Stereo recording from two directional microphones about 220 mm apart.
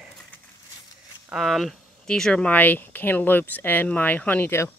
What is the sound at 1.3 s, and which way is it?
Speech, centre (ahead or behind).